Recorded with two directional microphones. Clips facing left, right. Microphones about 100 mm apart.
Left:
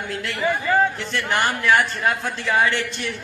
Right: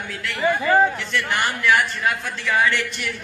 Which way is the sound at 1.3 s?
35° left (ahead or behind).